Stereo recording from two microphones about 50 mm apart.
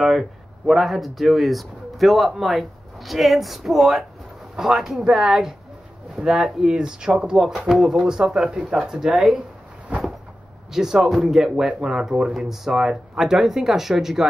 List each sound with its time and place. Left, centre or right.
0.7 s speech: centre
10.7 s speech: centre